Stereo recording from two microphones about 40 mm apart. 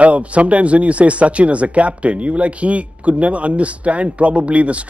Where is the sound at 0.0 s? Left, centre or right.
Right.